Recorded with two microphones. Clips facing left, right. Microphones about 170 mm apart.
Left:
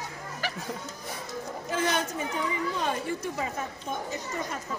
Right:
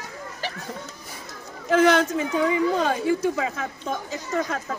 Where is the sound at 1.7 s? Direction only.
90° right.